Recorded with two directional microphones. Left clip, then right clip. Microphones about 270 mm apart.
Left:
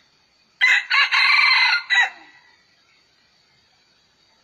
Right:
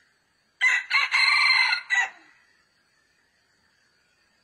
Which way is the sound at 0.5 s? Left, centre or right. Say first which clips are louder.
Left 5 dB; centre.